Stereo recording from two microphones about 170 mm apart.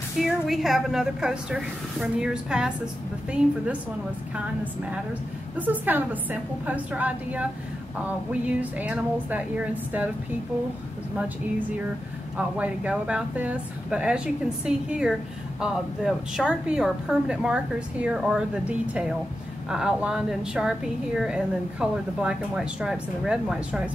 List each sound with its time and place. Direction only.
0.2 s a woman's voice: centre (ahead or behind)
5.6 s a woman's voice: 10° right (ahead or behind)
12.4 s a woman's voice: 5° right (ahead or behind)